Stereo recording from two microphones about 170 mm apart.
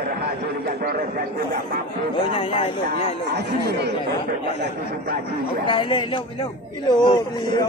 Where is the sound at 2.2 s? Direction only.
30° left (ahead or behind).